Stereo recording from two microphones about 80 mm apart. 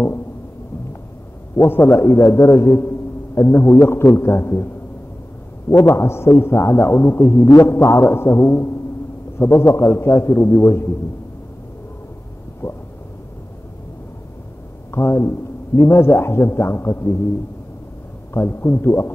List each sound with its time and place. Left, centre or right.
1.6 s a man's voice: left
5.7 s a man's voice: left
12.6 s a man's voice: left
14.9 s a man's voice: left
18.3 s a man's voice: left